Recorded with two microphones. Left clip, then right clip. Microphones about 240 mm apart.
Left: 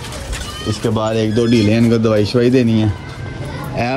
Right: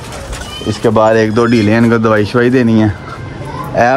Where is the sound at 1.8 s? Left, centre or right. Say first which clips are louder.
Right 4 dB; centre.